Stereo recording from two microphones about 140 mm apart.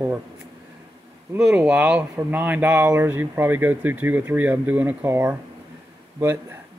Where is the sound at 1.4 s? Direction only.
5° right (ahead or behind).